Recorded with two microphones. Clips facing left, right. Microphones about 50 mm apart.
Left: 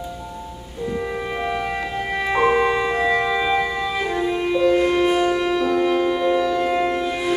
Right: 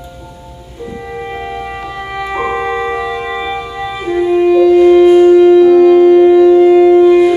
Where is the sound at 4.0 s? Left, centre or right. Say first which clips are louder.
Right 14 dB; centre.